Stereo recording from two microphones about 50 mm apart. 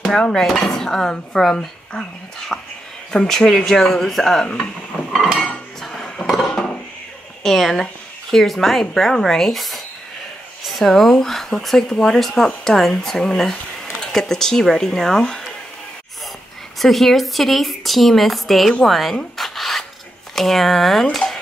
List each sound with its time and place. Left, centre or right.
0.3 s speech: centre
5.8 s cutlery: centre
6.4 s dishes: centre
7.4 s speech: centre
16.7 s speech: centre
18.9 s a sound: centre
20.3 s speech: centre